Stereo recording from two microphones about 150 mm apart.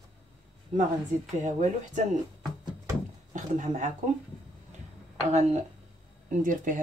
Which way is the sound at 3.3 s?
55° right (ahead or behind).